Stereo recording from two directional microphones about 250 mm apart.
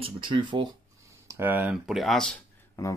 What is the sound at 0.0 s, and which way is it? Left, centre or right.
Speech, centre.